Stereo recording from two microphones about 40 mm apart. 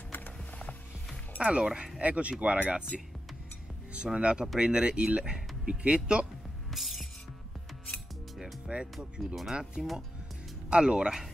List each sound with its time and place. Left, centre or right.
1.4 s speech: right
6.7 s music: centre
8.7 s speech: right
9.2 s speech: centre
10.7 s speech: right